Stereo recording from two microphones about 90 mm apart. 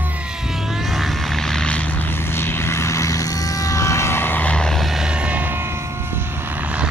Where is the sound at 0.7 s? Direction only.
Centre (ahead or behind); by 5.6 s 20° right (ahead or behind).